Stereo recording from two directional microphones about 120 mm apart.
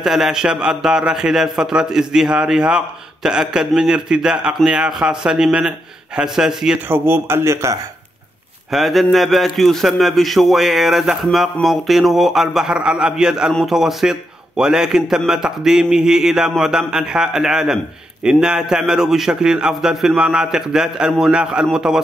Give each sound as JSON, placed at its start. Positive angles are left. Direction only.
{"t": 0.0, "sound": "a man's voice", "side_deg": -5}
{"t": 6.9, "sound": "a man's voice", "side_deg": -20}
{"t": 8.7, "sound": "a man's voice", "side_deg": 0}